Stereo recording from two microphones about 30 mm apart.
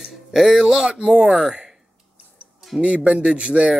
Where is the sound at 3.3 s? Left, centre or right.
Right.